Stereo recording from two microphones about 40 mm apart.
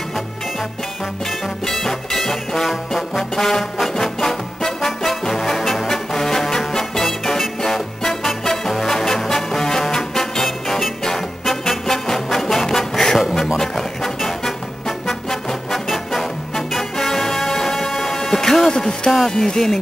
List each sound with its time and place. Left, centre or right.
1.7 s music: centre
2.9 s trombone: centre
3.9 s music: centre
19.2 s speech: centre